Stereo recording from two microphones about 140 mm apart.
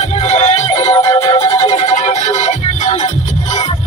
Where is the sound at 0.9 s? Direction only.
20° left (ahead or behind).